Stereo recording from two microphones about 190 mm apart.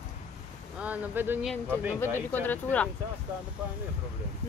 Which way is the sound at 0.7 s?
5° right (ahead or behind).